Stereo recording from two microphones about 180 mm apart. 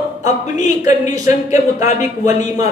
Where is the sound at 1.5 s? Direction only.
45° left (ahead or behind).